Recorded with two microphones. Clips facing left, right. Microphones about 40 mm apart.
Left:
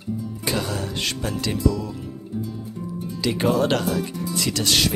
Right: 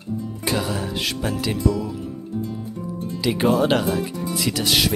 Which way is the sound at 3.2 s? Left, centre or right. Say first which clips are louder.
Right 2 dB; centre.